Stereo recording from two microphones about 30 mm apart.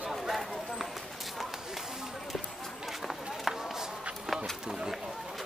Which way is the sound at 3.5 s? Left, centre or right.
Centre.